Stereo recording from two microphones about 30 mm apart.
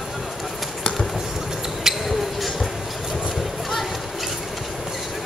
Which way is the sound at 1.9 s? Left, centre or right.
Centre.